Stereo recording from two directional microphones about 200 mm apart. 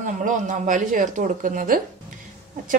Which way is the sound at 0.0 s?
40° right (ahead or behind).